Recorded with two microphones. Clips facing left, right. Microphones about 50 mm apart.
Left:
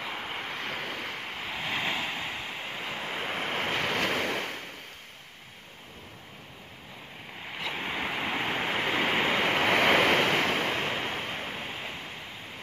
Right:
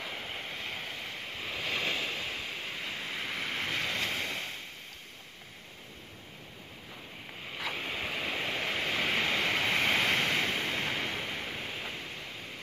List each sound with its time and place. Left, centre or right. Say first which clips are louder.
0.1 s waves: left 4 dB; left
7.7 s waves: left 5 dB; left